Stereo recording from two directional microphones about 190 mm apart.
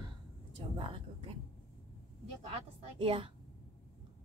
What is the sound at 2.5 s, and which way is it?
Speech, 30° right (ahead or behind).